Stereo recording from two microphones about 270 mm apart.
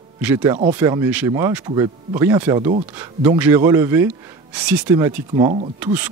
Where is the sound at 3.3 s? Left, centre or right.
Centre.